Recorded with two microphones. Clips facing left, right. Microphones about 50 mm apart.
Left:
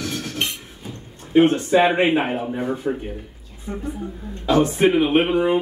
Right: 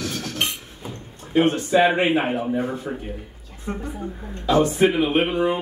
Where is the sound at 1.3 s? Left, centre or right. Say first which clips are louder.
Left 3 dB; centre.